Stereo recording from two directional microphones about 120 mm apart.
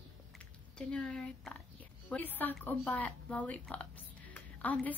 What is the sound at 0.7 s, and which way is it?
A woman's voice, 10° left (ahead or behind).